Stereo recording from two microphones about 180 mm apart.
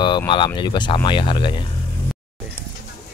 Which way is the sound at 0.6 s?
25° left (ahead or behind).